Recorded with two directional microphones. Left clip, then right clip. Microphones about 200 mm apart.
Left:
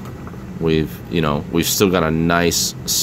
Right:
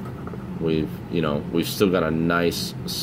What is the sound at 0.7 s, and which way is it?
Speech, 30° left (ahead or behind).